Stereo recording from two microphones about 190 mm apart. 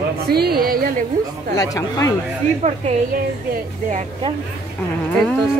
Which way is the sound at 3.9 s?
40° right (ahead or behind).